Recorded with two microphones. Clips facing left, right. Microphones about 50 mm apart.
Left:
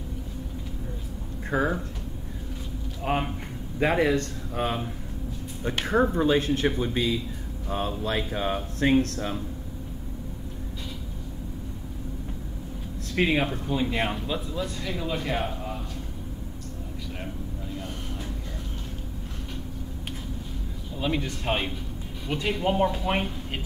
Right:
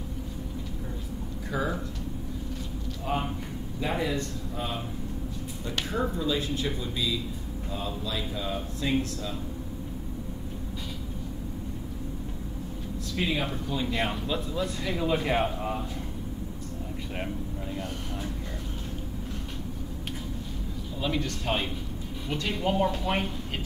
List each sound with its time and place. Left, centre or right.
1.5 s speech: left
3.1 s speech: left
6.1 s speech: left
13.1 s speech: left
13.5 s speech: centre
14.5 s speech: centre
21.0 s speech: centre